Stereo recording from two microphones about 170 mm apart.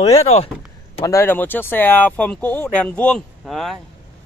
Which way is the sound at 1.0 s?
15° left (ahead or behind).